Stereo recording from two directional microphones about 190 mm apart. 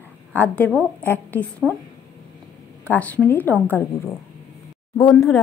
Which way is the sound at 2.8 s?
5° left (ahead or behind).